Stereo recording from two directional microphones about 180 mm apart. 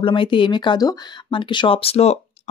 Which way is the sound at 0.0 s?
30° left (ahead or behind).